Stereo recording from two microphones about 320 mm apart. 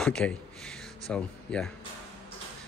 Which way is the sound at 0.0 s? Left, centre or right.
Centre.